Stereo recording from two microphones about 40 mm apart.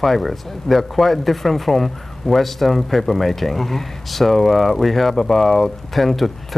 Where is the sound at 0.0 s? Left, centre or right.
Centre.